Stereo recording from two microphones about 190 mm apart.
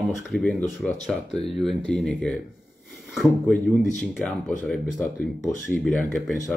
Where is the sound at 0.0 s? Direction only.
Centre (ahead or behind).